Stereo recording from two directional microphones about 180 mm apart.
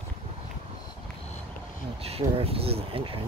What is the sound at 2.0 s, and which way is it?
Speech, 35° right (ahead or behind).